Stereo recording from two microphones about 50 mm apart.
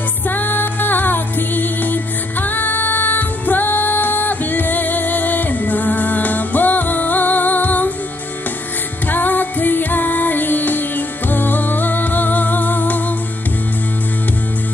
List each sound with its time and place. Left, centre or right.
0.3 s music: left
9.0 s music: left